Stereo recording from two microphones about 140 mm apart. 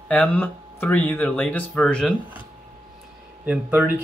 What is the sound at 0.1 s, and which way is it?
Speech, 10° left (ahead or behind).